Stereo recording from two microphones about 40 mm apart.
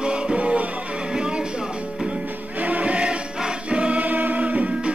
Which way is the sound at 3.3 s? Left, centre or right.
Centre.